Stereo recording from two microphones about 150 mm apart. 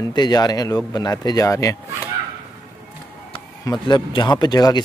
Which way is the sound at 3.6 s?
30° left (ahead or behind).